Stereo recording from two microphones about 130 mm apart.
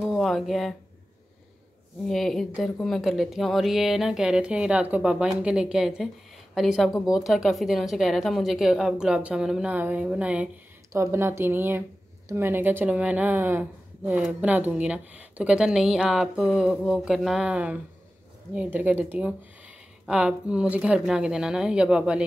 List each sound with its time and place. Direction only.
0.0 s speech: centre (ahead or behind)
2.0 s speech: centre (ahead or behind)
10.9 s speech: 20° right (ahead or behind)